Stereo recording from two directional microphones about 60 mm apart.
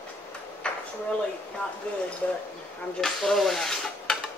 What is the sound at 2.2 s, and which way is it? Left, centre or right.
Speech, left.